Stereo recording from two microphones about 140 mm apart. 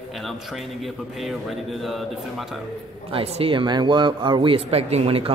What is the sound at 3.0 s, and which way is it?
A man's voice, 40° right (ahead or behind).